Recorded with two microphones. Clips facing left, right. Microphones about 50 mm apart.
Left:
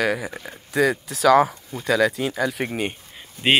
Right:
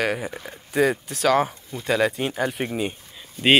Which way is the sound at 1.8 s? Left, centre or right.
Left.